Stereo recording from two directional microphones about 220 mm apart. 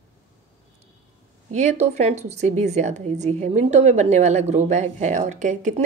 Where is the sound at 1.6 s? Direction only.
30° right (ahead or behind).